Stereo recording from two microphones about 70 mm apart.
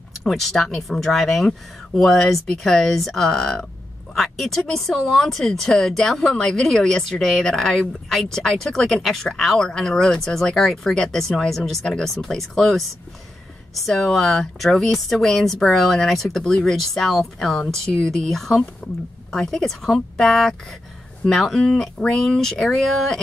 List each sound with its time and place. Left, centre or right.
0.2 s a woman's voice: centre